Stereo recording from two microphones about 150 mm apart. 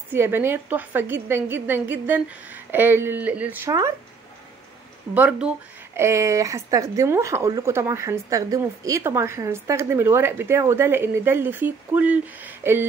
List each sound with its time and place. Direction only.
0.1 s speech: 15° right (ahead or behind)
5.1 s speech: 10° right (ahead or behind)